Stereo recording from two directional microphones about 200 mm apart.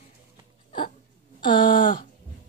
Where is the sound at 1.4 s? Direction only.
25° left (ahead or behind).